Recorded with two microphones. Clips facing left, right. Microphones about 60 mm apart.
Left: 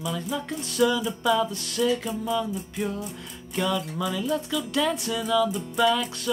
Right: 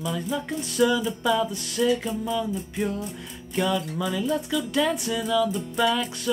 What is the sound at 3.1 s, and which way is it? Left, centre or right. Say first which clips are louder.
Speech: right 2 dB; centre.